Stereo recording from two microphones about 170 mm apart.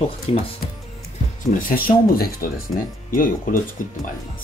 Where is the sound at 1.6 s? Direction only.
60° left (ahead or behind).